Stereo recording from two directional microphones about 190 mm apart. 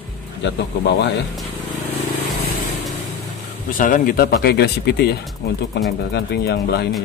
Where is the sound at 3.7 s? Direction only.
45° left (ahead or behind).